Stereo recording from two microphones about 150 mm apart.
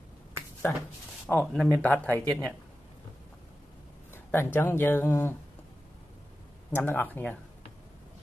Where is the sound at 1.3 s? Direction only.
10° left (ahead or behind).